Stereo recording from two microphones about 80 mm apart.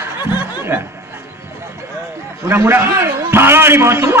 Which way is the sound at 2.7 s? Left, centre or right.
Right.